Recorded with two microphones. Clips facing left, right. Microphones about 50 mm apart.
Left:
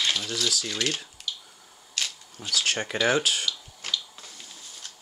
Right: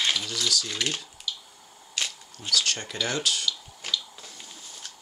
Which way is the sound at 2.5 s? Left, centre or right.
Centre.